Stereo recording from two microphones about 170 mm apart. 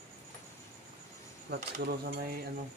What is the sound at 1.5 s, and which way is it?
Speech, 75° right (ahead or behind).